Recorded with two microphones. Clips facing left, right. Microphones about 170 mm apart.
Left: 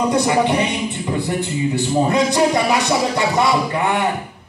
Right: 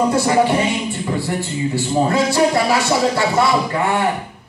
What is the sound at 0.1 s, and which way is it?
Speech, 20° left (ahead or behind).